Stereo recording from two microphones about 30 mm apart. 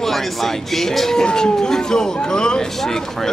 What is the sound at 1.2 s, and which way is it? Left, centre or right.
Speech, left.